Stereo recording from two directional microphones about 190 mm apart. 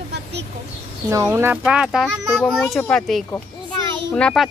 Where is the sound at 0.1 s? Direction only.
65° right (ahead or behind).